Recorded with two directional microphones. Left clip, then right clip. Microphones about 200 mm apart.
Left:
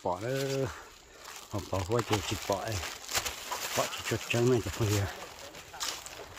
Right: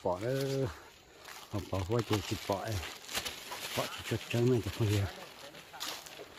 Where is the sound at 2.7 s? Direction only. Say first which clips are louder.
Left 4 dB; 20° left (ahead or behind).